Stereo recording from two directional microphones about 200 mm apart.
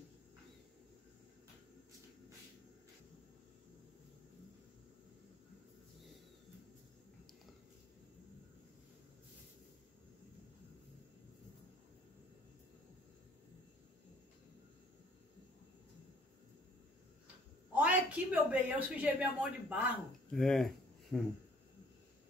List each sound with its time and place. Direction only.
17.7 s speech: 5° right (ahead or behind)
20.2 s speech: centre (ahead or behind)